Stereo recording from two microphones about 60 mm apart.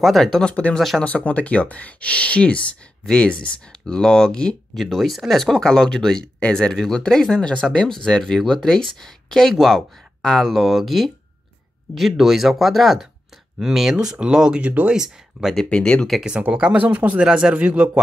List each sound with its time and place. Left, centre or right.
0.0 s speech: centre
0.5 s speech: centre
0.7 s speech: centre
1.0 s speech: left; by 14.6 s centre
14.6 s speech: right
14.9 s speech: centre
15.5 s speech: centre
16.2 s speech: centre